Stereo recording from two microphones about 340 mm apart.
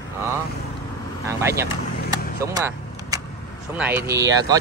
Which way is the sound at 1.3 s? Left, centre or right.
Centre.